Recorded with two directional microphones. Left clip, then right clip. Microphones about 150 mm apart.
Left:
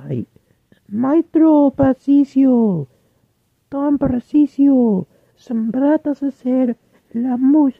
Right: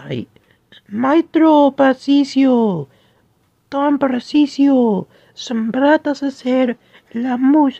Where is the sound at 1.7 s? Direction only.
25° left (ahead or behind).